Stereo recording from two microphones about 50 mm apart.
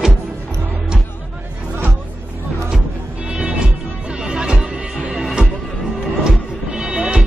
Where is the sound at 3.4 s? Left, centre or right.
Centre.